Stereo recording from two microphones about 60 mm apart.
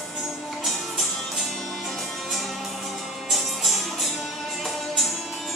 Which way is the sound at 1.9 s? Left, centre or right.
Centre.